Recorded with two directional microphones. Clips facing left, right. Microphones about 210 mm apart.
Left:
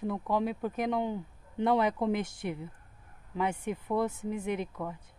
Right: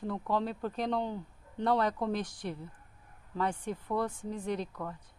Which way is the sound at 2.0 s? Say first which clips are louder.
Left 3 dB; 20° left (ahead or behind).